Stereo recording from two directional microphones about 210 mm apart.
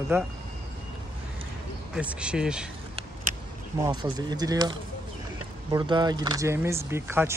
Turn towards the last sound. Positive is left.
turn(degrees=-10)  # may be behind; listen again after turning